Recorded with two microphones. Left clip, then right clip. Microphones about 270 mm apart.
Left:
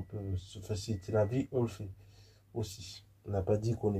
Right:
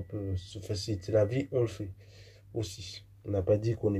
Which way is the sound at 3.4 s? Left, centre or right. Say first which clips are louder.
Right 5 dB; centre.